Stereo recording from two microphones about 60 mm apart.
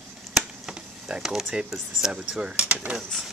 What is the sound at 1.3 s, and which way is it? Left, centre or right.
Speech, centre.